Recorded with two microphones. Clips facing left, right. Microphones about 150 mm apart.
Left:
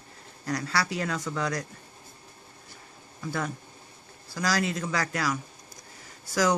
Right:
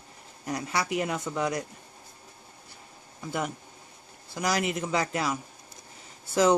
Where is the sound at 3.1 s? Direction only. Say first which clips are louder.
Even; 20° right (ahead or behind).